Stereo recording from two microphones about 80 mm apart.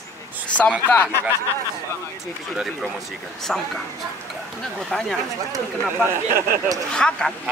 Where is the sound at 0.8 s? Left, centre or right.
Left.